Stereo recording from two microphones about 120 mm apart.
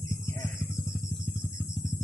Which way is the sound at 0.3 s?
20° left (ahead or behind).